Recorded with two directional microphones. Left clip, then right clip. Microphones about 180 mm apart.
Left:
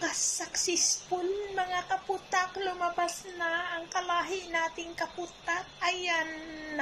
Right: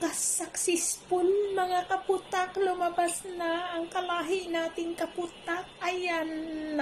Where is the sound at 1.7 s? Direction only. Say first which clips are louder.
Right 3 dB; 20° right (ahead or behind).